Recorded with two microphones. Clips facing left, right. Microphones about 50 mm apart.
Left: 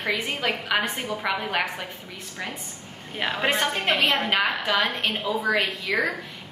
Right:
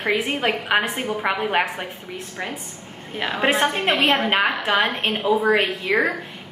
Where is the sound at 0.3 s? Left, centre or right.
Right.